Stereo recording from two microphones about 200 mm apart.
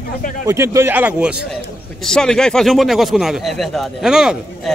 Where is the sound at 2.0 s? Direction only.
5° left (ahead or behind).